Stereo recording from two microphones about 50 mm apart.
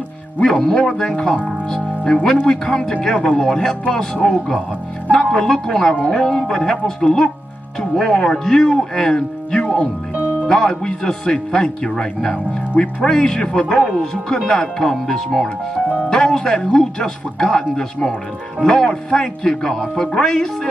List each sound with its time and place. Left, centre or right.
0.4 s speech: centre